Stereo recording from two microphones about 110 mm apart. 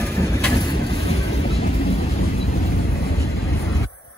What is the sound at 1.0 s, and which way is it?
Vehicle, 70° left (ahead or behind).